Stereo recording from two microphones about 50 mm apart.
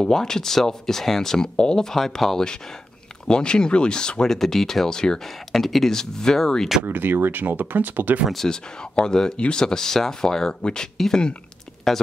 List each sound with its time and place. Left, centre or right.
0.0 s speech: centre
6.8 s speech: right
8.5 s speech: centre